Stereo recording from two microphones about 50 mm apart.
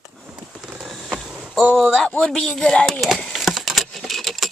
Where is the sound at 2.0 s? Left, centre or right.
Centre.